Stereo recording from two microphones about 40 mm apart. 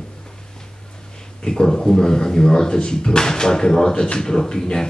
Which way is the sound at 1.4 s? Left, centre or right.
Centre.